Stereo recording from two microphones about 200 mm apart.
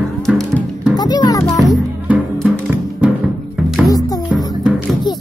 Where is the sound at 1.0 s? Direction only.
20° left (ahead or behind).